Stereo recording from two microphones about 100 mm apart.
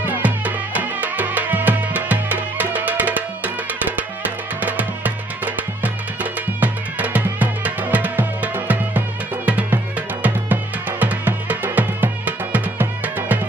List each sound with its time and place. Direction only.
0.0 s music: 15° right (ahead or behind)
6.6 s music: 15° right (ahead or behind)